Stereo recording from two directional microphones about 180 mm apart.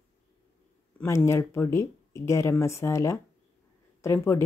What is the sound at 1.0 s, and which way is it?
Speech, 15° left (ahead or behind).